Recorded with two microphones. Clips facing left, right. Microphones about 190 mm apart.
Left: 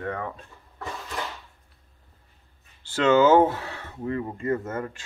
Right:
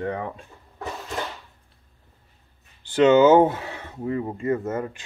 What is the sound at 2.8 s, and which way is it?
Speech, 20° right (ahead or behind).